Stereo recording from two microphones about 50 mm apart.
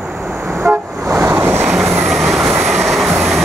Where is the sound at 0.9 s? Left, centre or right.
Right.